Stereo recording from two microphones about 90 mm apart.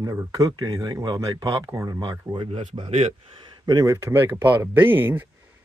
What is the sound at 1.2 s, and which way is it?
Speech, 40° right (ahead or behind).